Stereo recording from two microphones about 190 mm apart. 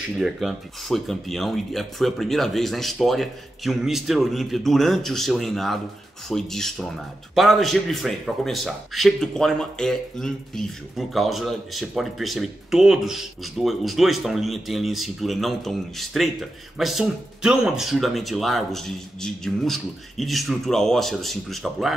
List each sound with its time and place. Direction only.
0.2 s speech: centre (ahead or behind)